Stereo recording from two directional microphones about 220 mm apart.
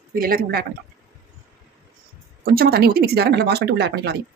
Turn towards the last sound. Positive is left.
turn(degrees=-50)  # may be behind; listen again after turning